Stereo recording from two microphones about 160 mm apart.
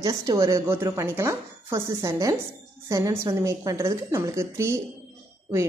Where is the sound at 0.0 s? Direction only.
20° right (ahead or behind).